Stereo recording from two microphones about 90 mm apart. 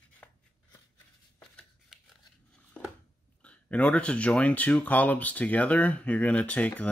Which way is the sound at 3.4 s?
15° left (ahead or behind).